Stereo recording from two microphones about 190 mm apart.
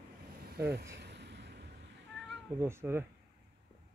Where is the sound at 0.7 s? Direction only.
15° right (ahead or behind).